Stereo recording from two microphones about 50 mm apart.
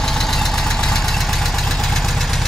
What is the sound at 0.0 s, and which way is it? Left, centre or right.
Vehicle, centre.